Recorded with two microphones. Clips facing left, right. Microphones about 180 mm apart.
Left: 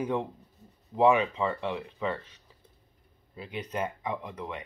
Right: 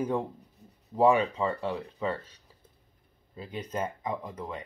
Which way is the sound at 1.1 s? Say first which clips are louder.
Even; 35° right (ahead or behind).